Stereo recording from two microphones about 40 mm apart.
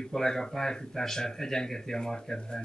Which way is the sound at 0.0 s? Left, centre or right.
Centre.